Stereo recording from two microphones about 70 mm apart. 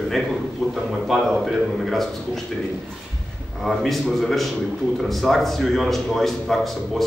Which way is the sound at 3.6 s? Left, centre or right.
Centre.